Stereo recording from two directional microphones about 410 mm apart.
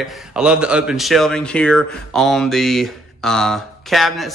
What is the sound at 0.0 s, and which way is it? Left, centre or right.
Speech, centre.